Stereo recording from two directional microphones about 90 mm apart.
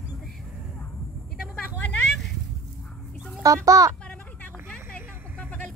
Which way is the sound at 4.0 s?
15° left (ahead or behind).